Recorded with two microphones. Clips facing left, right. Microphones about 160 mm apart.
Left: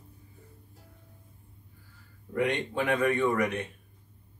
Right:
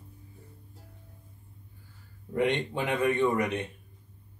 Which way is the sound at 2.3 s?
20° right (ahead or behind).